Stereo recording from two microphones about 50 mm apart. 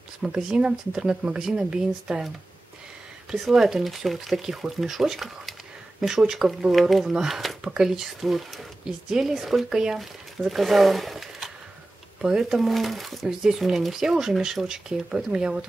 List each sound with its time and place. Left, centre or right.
0.2 s speech: centre
3.3 s speech: centre
12.2 s speech: centre
12.5 s speech: centre